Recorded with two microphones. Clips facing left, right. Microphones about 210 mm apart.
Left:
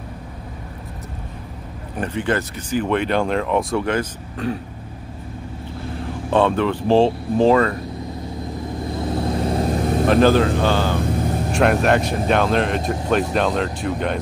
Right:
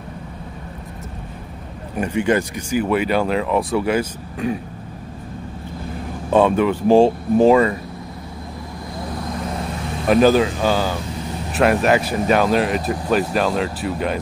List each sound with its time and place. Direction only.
2.0 s speech: 10° right (ahead or behind)
6.3 s speech: 10° right (ahead or behind)
8.9 s vehicle: 25° left (ahead or behind)
10.0 s speech: 10° right (ahead or behind)